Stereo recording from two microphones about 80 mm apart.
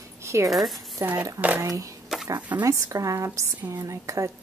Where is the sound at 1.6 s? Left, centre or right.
Right.